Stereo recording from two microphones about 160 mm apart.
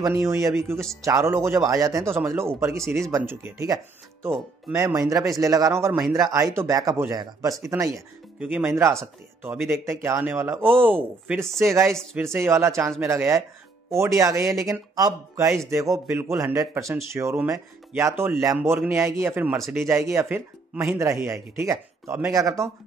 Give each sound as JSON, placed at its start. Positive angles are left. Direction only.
{"t": 0.0, "sound": "speech", "side_deg": -20}
{"t": 4.2, "sound": "speech", "side_deg": 0}
{"t": 4.7, "sound": "speech", "side_deg": -20}
{"t": 5.9, "sound": "speech", "side_deg": 0}
{"t": 6.3, "sound": "speech", "side_deg": -15}
{"t": 11.6, "sound": "speech", "side_deg": -15}
{"t": 11.9, "sound": "speech", "side_deg": 5}
{"t": 12.2, "sound": "speech", "side_deg": -15}
{"t": 19.5, "sound": "speech", "side_deg": 0}
{"t": 19.9, "sound": "speech", "side_deg": -15}